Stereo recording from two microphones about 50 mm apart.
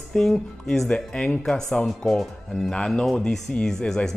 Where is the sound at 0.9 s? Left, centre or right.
Centre.